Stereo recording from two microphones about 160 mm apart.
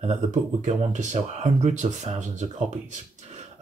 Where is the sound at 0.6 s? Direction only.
50° right (ahead or behind).